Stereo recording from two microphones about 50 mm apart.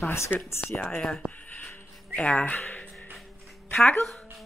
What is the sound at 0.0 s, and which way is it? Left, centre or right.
Speech, left.